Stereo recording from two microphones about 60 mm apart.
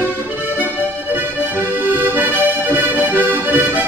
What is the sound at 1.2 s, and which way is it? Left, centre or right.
Accordion, right.